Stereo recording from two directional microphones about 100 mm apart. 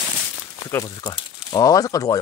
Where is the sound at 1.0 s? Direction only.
50° left (ahead or behind).